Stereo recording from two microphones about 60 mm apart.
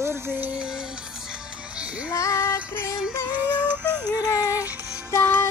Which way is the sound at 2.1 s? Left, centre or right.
Left.